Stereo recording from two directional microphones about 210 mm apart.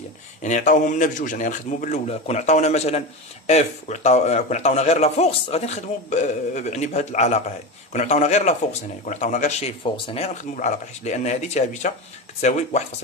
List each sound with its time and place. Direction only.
0.4 s a man's voice: 35° left (ahead or behind)